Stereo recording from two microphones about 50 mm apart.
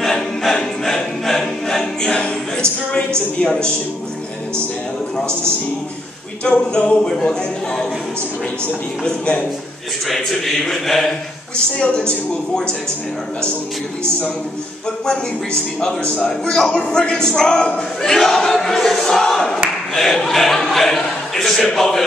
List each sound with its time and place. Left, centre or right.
0.0 s choir: centre
3.3 s a woman's voice: left
6.4 s speech: left
9.0 s a woman's voice: left
10.0 s a man's voice: centre
11.5 s a woman's voice: centre
15.0 s speech: centre
17.0 s a man's voice: left; by 22.0 s centre